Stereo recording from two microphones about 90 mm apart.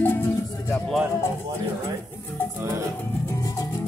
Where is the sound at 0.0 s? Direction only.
20° left (ahead or behind).